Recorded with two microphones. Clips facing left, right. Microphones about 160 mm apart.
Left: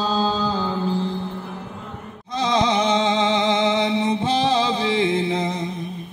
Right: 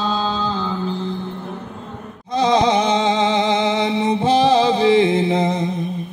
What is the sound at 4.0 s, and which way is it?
Music, 60° right (ahead or behind).